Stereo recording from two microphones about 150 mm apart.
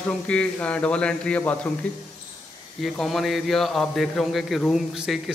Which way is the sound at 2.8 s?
Centre (ahead or behind).